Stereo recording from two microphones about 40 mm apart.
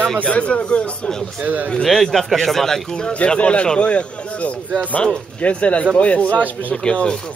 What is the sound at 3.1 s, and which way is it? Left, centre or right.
Speech, left.